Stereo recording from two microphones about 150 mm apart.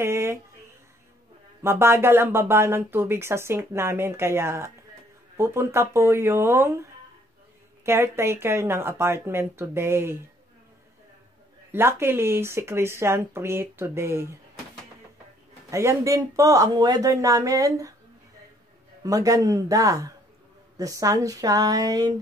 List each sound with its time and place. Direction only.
0.0 s a sound: 15° right (ahead or behind)
1.6 s speech: 15° right (ahead or behind)
11.7 s speech: 15° right (ahead or behind)
15.7 s speech: 20° right (ahead or behind)
19.0 s speech: 20° right (ahead or behind)